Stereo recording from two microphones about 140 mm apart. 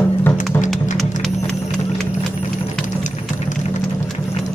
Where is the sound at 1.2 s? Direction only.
5° left (ahead or behind).